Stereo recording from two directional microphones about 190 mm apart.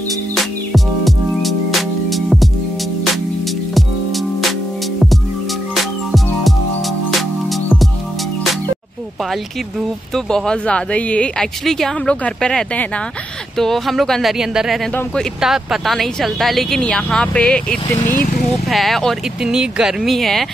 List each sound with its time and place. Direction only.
0.7 s music: centre (ahead or behind)
3.7 s music: centre (ahead or behind)
6.1 s music: centre (ahead or behind)
9.3 s speech: centre (ahead or behind)
18.0 s speech: 45° left (ahead or behind)
18.7 s speech: centre (ahead or behind)